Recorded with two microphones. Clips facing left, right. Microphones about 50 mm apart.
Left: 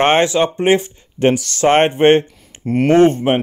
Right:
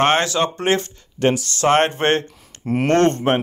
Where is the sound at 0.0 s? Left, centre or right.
Left.